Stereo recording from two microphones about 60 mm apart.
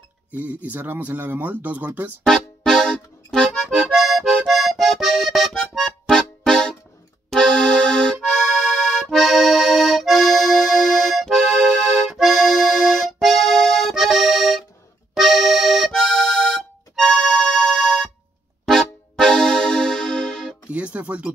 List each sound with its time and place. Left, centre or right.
0.3 s speech: right
2.2 s accordion: centre
6.4 s music: centre
7.2 s accordion: centre
9.0 s accordion: centre
18.7 s music: centre
20.7 s music: right